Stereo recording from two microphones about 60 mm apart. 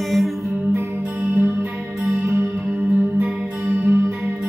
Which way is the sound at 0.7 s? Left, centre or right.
Right.